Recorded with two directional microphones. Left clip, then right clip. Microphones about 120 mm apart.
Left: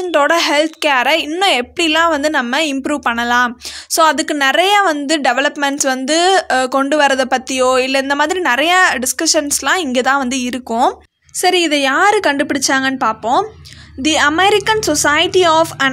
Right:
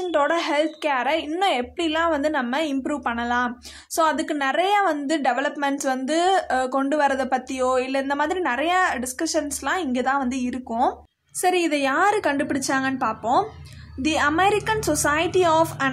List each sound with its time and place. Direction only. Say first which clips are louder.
0.1 s a woman's voice: left 9 dB; 35° left (ahead or behind)
11.4 s a woman's voice: left 8 dB; 35° left (ahead or behind)